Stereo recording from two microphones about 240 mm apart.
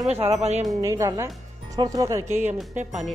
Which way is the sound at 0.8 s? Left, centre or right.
Centre.